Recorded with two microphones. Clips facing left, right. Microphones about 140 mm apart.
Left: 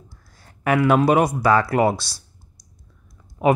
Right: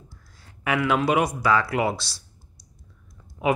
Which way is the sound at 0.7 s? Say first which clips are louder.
Left 6 dB; 45° left (ahead or behind).